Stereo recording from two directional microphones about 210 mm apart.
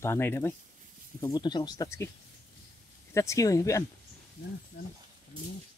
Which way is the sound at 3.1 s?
15° left (ahead or behind).